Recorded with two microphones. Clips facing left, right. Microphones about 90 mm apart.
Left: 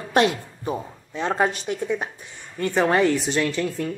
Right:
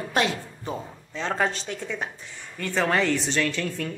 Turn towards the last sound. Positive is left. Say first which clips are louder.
# left 3 dB
turn(degrees=10)  # may be behind; listen again after turning